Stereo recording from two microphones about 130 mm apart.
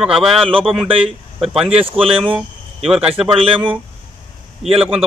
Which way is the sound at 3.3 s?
45° right (ahead or behind).